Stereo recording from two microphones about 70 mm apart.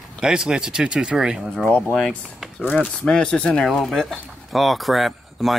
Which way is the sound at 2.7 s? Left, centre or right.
Centre.